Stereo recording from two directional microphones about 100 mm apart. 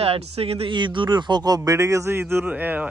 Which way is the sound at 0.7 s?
55° right (ahead or behind).